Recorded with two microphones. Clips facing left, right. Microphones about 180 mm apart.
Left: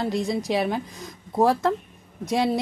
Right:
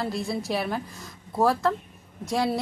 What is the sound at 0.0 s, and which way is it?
A woman's voice, 20° left (ahead or behind).